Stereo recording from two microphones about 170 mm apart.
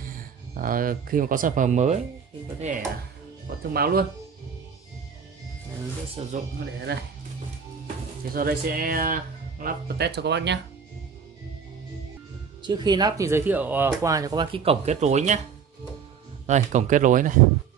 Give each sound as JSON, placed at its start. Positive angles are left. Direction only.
{"t": 0.6, "sound": "speech", "side_deg": -55}
{"t": 3.7, "sound": "speech", "side_deg": -65}
{"t": 6.2, "sound": "speech", "side_deg": -40}
{"t": 6.6, "sound": "speech", "side_deg": -70}
{"t": 8.3, "sound": "speech", "side_deg": -60}
{"t": 12.6, "sound": "speech", "side_deg": -25}
{"t": 16.4, "sound": "speech", "side_deg": -45}